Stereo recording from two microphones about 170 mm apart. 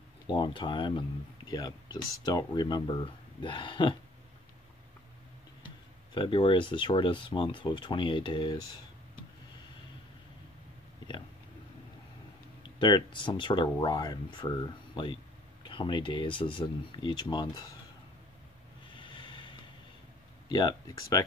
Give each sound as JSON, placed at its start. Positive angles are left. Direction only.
{"t": 0.3, "sound": "speech", "side_deg": 30}
{"t": 6.1, "sound": "speech", "side_deg": 30}
{"t": 12.6, "sound": "speech", "side_deg": 25}
{"t": 18.9, "sound": "snort", "side_deg": 30}
{"t": 20.4, "sound": "speech", "side_deg": 25}